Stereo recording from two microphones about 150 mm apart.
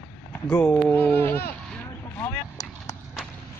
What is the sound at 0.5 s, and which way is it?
Speech, 10° left (ahead or behind).